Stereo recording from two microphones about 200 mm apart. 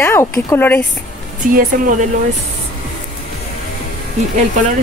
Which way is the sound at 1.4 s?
45° right (ahead or behind).